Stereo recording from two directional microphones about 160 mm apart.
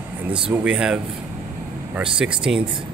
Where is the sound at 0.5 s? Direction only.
5° right (ahead or behind).